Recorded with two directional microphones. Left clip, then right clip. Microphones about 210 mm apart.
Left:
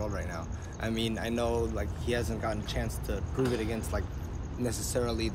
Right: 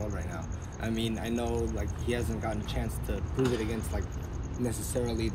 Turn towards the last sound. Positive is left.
turn(degrees=5)  # may be behind; listen again after turning